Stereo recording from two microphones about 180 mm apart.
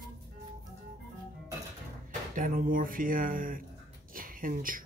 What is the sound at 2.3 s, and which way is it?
Speech, 50° right (ahead or behind).